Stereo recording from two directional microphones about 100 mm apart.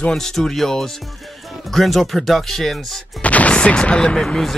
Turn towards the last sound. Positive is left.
turn(degrees=5)  # may be behind; listen again after turning